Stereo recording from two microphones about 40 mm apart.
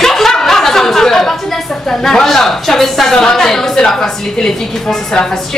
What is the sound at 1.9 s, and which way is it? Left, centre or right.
A woman's voice, centre.